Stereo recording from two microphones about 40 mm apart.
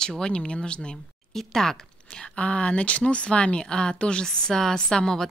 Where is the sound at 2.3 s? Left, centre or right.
Left.